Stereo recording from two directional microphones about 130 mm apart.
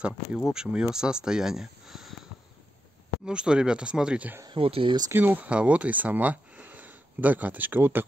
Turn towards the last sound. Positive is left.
turn(degrees=-15)  # may be behind; listen again after turning